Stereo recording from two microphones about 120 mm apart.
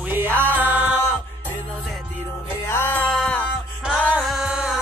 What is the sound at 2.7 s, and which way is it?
Music, 15° left (ahead or behind).